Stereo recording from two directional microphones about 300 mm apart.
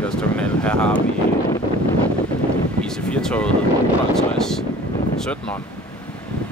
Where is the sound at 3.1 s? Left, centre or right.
Centre.